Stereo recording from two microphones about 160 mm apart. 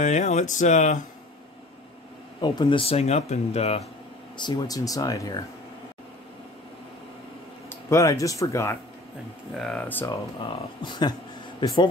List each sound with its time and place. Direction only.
0.0 s speech: 45° left (ahead or behind)
2.4 s speech: 30° left (ahead or behind)
4.4 s speech: 25° left (ahead or behind)
7.7 s speech: 20° left (ahead or behind)
9.5 s speech: 5° left (ahead or behind)
10.8 s speech: 25° left (ahead or behind)